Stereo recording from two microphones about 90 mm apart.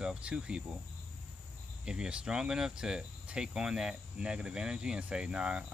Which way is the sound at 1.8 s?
10° right (ahead or behind).